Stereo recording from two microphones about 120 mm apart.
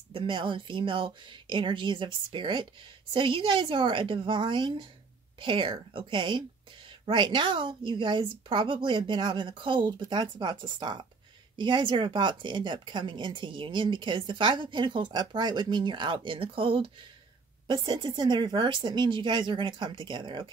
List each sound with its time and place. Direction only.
0.1 s a woman's voice: 45° right (ahead or behind)